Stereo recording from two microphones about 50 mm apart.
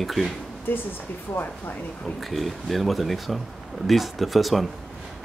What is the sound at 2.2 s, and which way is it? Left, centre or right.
Speech, centre.